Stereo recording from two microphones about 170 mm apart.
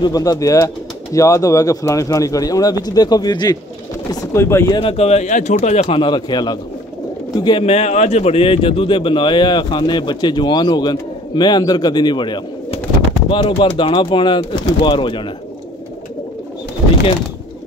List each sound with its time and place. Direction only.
0.0 s speech: 20° left (ahead or behind)
4.7 s speech: 35° left (ahead or behind)
7.6 s speech: 40° left (ahead or behind)